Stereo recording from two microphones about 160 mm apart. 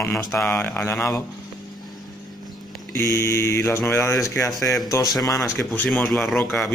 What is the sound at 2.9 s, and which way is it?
Speech, 15° left (ahead or behind).